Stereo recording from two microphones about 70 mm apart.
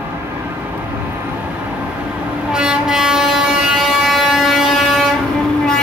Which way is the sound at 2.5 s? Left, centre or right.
Centre.